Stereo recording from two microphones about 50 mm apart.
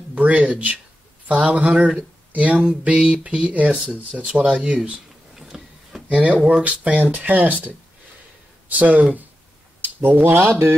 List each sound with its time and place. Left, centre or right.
0.1 s speech: right
2.0 s speech: right
3.0 s speech: centre
5.3 s a sound: centre
6.0 s speech: right